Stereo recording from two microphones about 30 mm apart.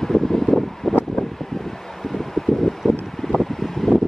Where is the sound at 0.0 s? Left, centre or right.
Centre.